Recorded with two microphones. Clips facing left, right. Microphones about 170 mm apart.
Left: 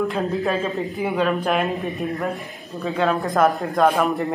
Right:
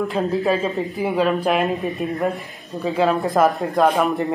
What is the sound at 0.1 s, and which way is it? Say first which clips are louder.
Speech: right 3 dB; centre (ahead or behind).